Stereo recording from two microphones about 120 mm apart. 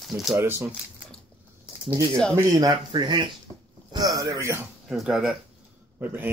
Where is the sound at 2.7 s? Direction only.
45° right (ahead or behind).